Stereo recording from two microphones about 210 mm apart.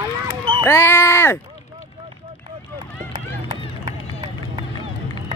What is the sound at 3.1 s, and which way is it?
Run, 20° right (ahead or behind).